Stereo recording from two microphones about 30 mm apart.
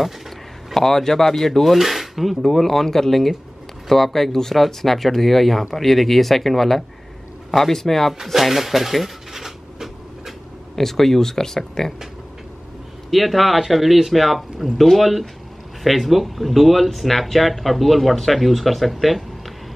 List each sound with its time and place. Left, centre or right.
0.7 s speech: centre
2.4 s speech: centre
8.3 s speech: centre
9.3 s a sound: centre
10.8 s speech: centre
13.1 s speech: centre